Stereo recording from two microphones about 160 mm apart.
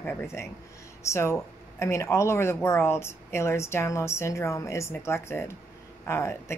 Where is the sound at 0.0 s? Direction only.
15° left (ahead or behind).